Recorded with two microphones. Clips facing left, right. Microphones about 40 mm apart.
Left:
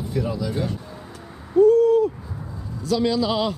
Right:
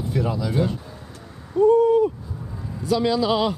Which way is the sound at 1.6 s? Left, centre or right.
Centre.